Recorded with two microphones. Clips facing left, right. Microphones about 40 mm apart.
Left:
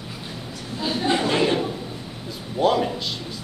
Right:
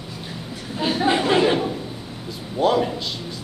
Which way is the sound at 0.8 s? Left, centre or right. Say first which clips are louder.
Right 3 dB; centre.